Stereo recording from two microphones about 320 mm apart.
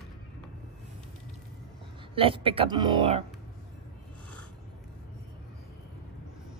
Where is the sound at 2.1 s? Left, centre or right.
Centre.